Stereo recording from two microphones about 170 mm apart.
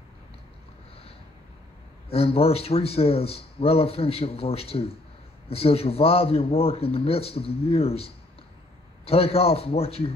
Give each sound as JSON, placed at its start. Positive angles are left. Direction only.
{"t": 2.0, "sound": "speech", "side_deg": 35}